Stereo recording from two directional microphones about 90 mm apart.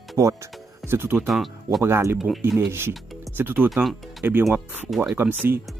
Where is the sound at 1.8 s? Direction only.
30° right (ahead or behind).